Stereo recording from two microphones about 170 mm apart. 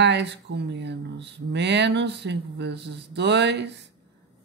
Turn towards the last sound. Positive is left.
turn(degrees=-90)